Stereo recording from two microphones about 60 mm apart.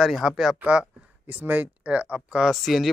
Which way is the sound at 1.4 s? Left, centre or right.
Right.